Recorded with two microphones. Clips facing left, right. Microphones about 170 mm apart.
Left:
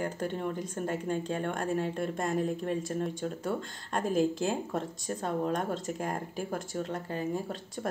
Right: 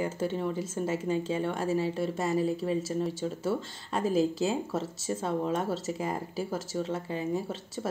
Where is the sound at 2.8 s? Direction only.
5° right (ahead or behind).